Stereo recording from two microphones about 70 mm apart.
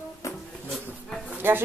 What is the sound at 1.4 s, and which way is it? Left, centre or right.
Speech, right.